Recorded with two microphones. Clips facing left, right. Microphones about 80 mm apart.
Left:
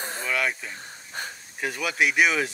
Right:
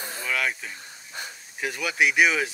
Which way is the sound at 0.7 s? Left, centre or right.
Left.